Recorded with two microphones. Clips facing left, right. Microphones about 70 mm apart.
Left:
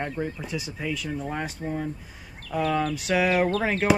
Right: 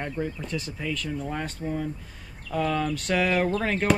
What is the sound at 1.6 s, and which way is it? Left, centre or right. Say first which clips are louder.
Speech: right 2 dB; left.